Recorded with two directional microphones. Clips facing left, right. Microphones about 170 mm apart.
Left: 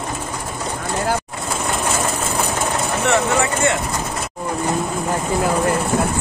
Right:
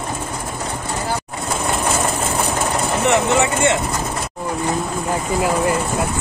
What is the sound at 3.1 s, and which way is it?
Speech, 20° right (ahead or behind).